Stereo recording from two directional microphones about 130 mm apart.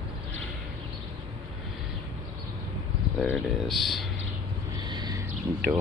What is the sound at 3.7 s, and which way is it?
Speech, centre (ahead or behind).